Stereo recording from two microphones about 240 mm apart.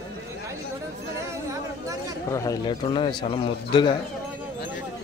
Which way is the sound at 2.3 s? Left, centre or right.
Centre.